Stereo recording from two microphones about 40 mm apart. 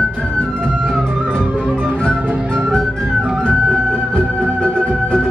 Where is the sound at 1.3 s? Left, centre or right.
Left.